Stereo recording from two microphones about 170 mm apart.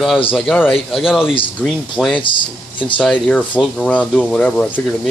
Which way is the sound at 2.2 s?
30° left (ahead or behind).